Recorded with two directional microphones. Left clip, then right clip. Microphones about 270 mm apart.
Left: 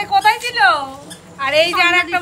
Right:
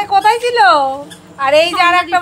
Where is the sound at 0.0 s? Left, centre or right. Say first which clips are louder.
Right 3 dB; centre.